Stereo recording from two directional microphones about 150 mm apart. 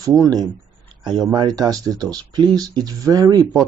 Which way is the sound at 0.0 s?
25° right (ahead or behind).